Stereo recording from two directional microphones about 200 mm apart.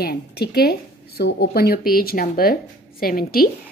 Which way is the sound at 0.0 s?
50° left (ahead or behind).